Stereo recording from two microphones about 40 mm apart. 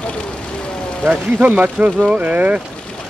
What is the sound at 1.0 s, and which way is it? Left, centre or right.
Speech, right.